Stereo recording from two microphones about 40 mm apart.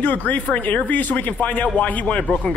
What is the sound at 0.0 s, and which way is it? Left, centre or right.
A man's voice, left.